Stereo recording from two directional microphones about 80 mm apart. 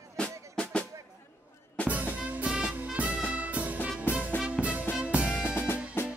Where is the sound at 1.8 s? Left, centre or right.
Centre.